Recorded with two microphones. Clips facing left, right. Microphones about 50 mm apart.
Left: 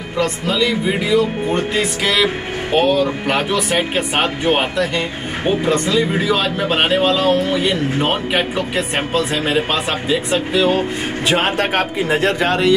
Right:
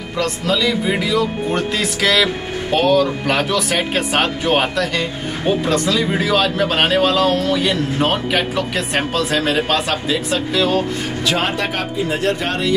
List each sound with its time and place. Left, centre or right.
0.2 s speech: centre
2.0 s speech: centre
11.2 s a man's voice: left